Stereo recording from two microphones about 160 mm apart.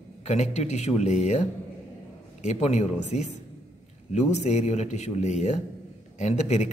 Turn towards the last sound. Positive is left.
turn(degrees=45)  # may be behind; listen again after turning